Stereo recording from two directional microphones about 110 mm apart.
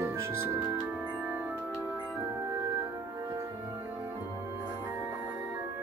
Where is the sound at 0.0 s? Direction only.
20° right (ahead or behind).